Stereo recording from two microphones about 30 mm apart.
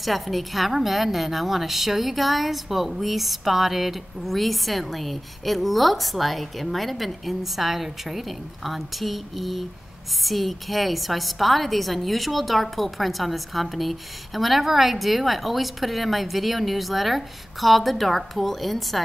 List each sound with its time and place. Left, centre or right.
0.0 s a woman's voice: centre